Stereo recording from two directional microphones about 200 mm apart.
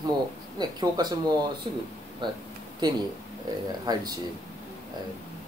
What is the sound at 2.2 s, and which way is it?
Speech, 25° right (ahead or behind).